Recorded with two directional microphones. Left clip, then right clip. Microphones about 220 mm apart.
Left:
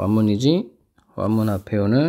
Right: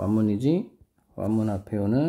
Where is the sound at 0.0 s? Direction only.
25° left (ahead or behind).